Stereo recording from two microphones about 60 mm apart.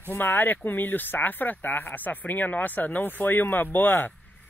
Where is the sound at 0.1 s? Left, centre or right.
Left.